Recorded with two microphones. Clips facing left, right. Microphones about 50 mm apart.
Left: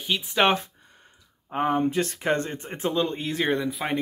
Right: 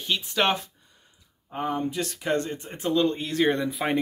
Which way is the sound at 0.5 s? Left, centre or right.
Left.